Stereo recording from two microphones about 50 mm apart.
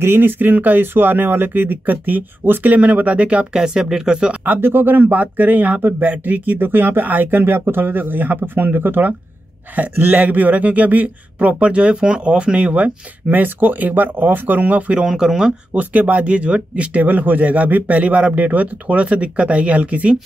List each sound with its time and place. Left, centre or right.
0.0 s speech: right
3.5 s speech: centre
4.6 s speech: right
9.8 s speech: right
15.0 s speech: centre
15.7 s speech: right